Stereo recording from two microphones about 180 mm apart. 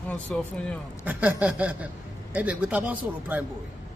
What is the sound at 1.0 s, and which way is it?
Speech, 10° right (ahead or behind).